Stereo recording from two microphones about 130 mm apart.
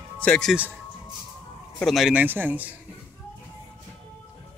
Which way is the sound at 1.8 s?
Centre (ahead or behind).